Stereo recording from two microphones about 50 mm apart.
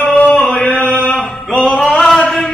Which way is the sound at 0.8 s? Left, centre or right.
Left.